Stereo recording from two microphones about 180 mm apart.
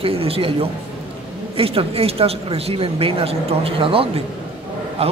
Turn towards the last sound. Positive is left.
turn(degrees=-35)  # may be behind; listen again after turning